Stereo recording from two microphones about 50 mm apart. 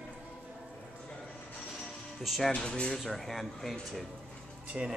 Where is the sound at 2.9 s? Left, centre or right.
Centre.